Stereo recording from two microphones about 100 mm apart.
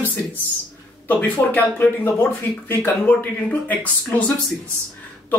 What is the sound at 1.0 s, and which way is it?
Speech, 15° left (ahead or behind).